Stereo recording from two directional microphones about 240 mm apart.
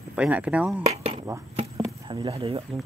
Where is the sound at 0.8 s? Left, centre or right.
Right.